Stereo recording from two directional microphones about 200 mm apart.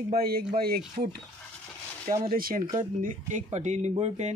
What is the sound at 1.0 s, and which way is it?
Speech, 35° right (ahead or behind).